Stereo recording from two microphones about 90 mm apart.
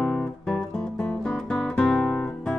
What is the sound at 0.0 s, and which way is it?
Music, centre (ahead or behind).